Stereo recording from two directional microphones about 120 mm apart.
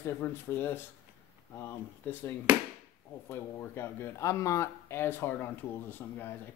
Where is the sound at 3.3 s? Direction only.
20° left (ahead or behind).